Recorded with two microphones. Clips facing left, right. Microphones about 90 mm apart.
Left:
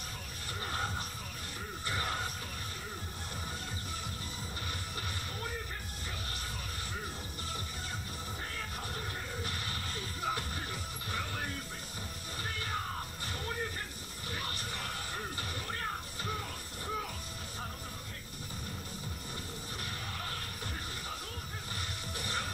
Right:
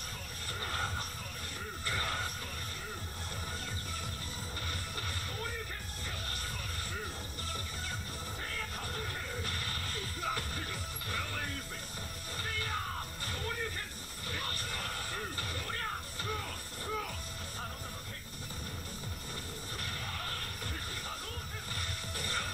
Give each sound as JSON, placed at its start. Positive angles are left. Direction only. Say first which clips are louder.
{"t": 0.7, "sound": "music", "louder": "left 1 dB", "side_deg": 15}
{"t": 8.9, "sound": "music", "louder": "even", "side_deg": 15}
{"t": 14.3, "sound": "music", "louder": "even", "side_deg": 15}
{"t": 22.1, "sound": "music", "louder": "left 1 dB", "side_deg": 15}